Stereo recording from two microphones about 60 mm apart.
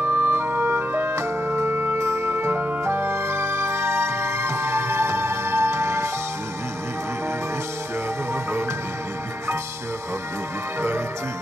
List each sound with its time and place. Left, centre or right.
0.0 s music: right